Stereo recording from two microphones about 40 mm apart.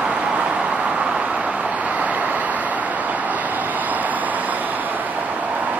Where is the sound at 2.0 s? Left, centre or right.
Right.